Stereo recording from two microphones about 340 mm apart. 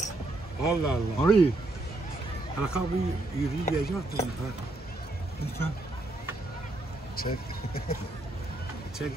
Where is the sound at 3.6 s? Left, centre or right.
Left.